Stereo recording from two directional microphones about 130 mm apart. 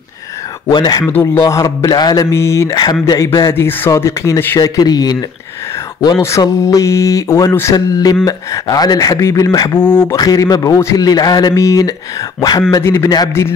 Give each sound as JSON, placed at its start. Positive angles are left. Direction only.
{"t": 0.7, "sound": "speech", "side_deg": 35}
{"t": 1.0, "sound": "a man's voice", "side_deg": 15}
{"t": 1.4, "sound": "a man's voice", "side_deg": 30}
{"t": 2.7, "sound": "a man's voice", "side_deg": 35}
{"t": 6.2, "sound": "a man's voice", "side_deg": 25}